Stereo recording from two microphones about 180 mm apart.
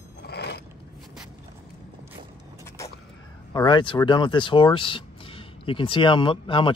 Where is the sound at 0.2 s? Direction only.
65° left (ahead or behind).